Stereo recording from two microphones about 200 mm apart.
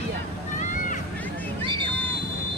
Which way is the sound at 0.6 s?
40° left (ahead or behind).